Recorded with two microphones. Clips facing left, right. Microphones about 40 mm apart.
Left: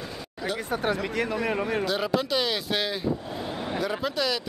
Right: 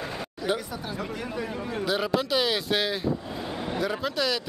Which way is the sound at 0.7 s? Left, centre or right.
Left.